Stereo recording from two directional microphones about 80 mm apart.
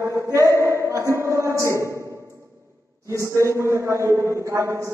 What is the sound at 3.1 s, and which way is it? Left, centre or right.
A woman's voice, right.